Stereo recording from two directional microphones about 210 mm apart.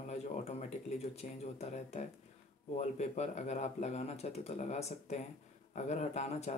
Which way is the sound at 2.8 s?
35° left (ahead or behind).